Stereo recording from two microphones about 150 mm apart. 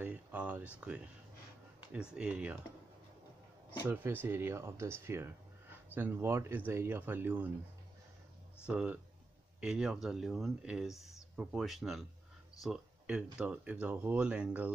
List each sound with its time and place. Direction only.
0.0 s a sound: 10° right (ahead or behind)
0.7 s speech: 10° right (ahead or behind)
3.9 s speech: 15° right (ahead or behind)
8.6 s speech: 10° right (ahead or behind)